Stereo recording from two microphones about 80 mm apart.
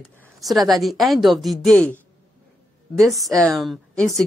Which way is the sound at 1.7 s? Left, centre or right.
Centre.